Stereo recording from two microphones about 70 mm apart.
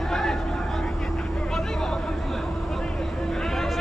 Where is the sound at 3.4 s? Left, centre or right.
Centre.